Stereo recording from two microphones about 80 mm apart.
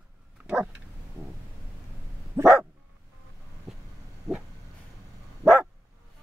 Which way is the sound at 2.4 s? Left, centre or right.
Right.